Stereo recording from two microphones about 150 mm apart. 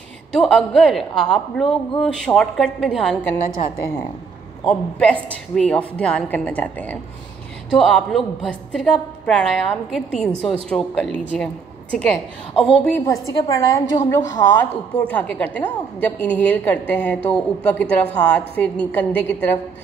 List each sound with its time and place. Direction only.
0.3 s a man's voice: centre (ahead or behind)
4.6 s a man's voice: 10° left (ahead or behind)
12.9 s a woman's voice: 20° left (ahead or behind)
15.0 s speech: 10° left (ahead or behind)